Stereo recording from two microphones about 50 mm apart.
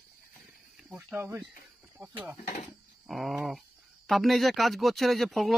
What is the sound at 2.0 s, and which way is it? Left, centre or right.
Speech, right.